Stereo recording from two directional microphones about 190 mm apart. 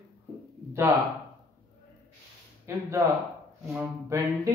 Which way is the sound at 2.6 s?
15° right (ahead or behind).